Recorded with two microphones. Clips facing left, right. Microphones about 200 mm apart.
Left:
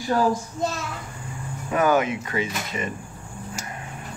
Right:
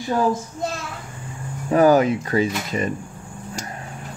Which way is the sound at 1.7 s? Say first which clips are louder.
Right 6 dB; 35° right (ahead or behind).